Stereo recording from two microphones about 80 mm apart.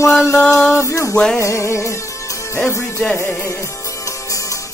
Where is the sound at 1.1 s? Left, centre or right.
Centre.